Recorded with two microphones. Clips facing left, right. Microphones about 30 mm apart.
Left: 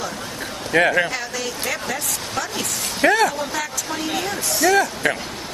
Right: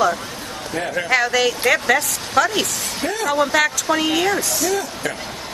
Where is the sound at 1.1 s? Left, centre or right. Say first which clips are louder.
Right 10 dB; right.